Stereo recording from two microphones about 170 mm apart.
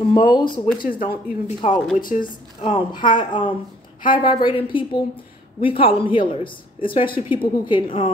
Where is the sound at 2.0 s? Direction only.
55° left (ahead or behind).